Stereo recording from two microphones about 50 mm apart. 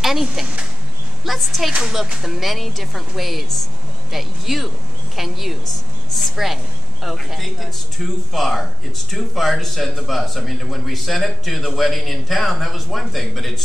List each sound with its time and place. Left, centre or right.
0.0 s a man's voice: centre
1.7 s speech: centre
2.2 s a man's voice: centre